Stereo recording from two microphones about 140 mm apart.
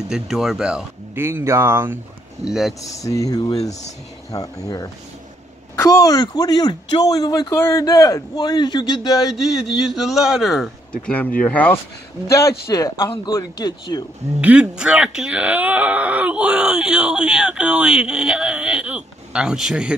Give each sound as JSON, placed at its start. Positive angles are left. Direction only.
{"t": 0.1, "sound": "speech", "side_deg": 0}
{"t": 1.2, "sound": "speech", "side_deg": -20}
{"t": 2.4, "sound": "a man's voice", "side_deg": 0}
{"t": 2.8, "sound": "speech", "side_deg": 25}
{"t": 5.8, "sound": "speech", "side_deg": 25}
{"t": 9.3, "sound": "a man's voice", "side_deg": 0}
{"t": 11.1, "sound": "speech", "side_deg": 10}
{"t": 12.4, "sound": "speech", "side_deg": 25}
{"t": 14.4, "sound": "speech", "side_deg": -10}